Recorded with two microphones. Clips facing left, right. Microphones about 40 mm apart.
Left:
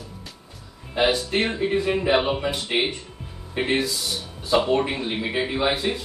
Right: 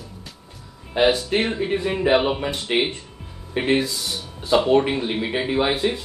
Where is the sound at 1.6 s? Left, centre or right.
Centre.